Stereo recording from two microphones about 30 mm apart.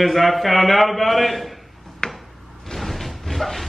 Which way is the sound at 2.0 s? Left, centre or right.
Centre.